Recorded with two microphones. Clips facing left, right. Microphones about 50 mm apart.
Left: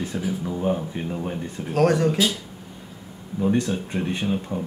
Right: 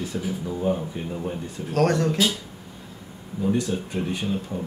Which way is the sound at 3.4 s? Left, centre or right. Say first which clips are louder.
Left 2 dB; left.